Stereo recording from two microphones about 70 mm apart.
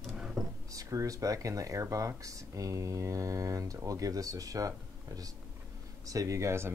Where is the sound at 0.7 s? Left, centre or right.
Right.